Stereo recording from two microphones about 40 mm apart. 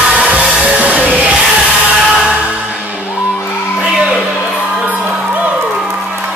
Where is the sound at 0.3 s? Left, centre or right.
Right.